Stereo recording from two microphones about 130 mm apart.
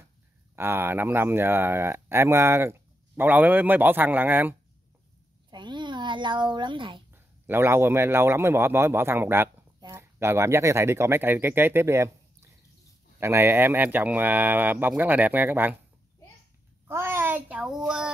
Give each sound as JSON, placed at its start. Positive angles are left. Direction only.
{"t": 0.6, "sound": "speech", "side_deg": -15}
{"t": 5.5, "sound": "speech", "side_deg": -35}
{"t": 7.2, "sound": "speech", "side_deg": -15}
{"t": 16.8, "sound": "a child's voice", "side_deg": -20}